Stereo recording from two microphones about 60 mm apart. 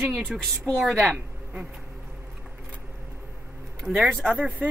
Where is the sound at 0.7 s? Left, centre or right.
Centre.